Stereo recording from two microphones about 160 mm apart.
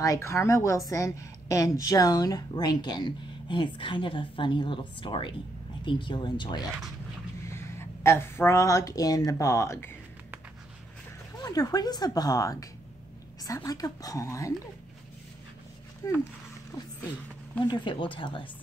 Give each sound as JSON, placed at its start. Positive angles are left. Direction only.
{"t": 0.0, "sound": "a woman's voice", "side_deg": 20}
{"t": 7.4, "sound": "speech", "side_deg": 15}
{"t": 11.3, "sound": "a woman's voice", "side_deg": 25}
{"t": 16.0, "sound": "a woman's voice", "side_deg": 25}
{"t": 16.7, "sound": "a sound", "side_deg": 20}
{"t": 17.6, "sound": "speech", "side_deg": 30}